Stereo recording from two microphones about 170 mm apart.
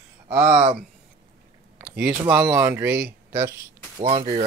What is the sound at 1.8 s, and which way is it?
Speech, 5° right (ahead or behind).